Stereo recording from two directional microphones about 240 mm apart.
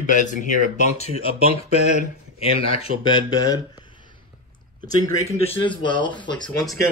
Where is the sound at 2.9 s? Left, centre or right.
Right.